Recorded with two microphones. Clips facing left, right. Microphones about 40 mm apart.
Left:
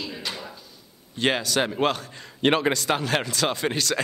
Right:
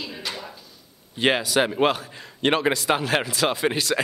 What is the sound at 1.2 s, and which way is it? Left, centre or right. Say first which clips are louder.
Speech: right 3 dB; centre.